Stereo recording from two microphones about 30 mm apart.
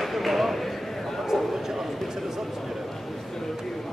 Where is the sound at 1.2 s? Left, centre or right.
Centre.